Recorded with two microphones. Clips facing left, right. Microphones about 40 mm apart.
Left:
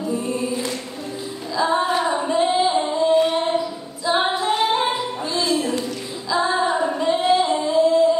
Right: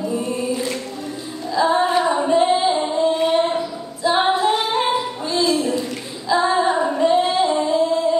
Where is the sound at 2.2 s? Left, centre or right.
Right.